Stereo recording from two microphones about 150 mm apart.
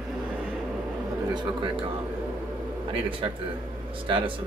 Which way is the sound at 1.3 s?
30° right (ahead or behind).